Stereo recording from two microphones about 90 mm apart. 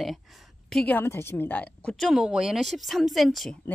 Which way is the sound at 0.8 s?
25° left (ahead or behind).